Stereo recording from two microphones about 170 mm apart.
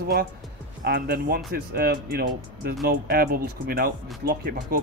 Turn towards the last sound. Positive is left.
turn(degrees=-65)  # may be behind; listen again after turning